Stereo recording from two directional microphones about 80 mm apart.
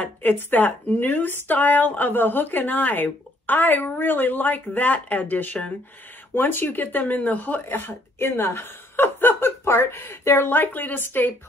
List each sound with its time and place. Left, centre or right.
0.0 s speech: left